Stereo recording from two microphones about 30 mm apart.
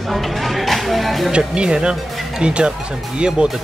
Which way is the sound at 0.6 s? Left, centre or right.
Centre.